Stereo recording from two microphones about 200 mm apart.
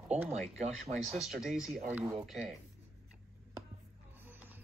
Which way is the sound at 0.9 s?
Centre (ahead or behind).